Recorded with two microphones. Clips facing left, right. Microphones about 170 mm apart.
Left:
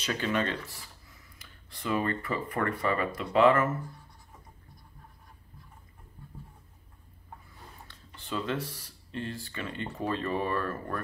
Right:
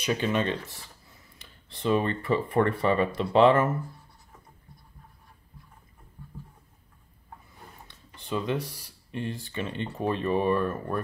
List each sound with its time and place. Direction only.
0.0 s speech: 20° right (ahead or behind)
0.7 s a sound: 25° right (ahead or behind)
1.7 s speech: 25° right (ahead or behind)
7.9 s speech: 15° right (ahead or behind)